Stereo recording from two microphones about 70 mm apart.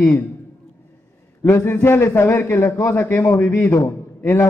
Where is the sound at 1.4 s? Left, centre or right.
Left.